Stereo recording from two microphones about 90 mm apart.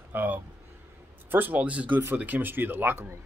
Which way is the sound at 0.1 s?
20° right (ahead or behind).